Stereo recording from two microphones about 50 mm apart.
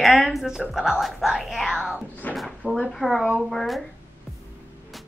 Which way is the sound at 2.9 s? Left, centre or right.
Centre.